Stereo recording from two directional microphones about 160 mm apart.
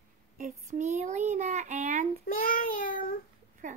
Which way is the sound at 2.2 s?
65° left (ahead or behind).